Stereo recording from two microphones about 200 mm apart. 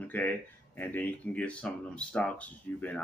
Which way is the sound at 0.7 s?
10° left (ahead or behind).